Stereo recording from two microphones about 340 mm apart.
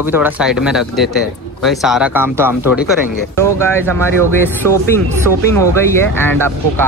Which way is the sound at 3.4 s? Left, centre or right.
Centre.